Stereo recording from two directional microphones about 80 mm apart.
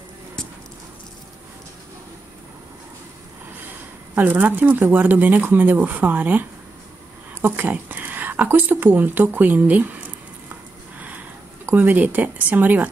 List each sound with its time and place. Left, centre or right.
4.1 s speech: right
7.4 s speech: right
11.6 s speech: right